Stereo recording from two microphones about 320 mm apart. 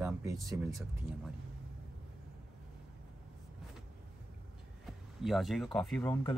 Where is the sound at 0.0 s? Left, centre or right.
Centre.